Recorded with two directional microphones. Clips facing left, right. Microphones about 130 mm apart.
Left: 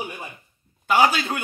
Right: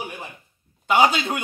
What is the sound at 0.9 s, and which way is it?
Speech, 20° right (ahead or behind).